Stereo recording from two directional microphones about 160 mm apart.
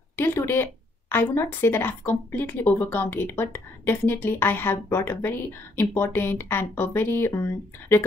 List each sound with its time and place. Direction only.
0.1 s speech: 15° left (ahead or behind)